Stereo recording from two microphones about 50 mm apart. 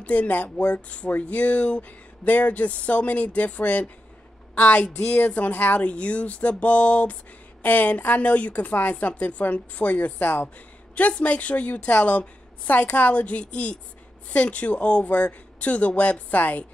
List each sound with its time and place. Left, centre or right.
0.0 s a woman's voice: left
5.8 s a woman's voice: left